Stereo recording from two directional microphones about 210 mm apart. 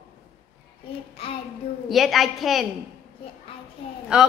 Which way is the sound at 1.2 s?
25° left (ahead or behind).